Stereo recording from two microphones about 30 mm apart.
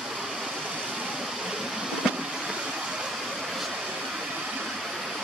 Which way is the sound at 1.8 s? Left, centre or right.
Right.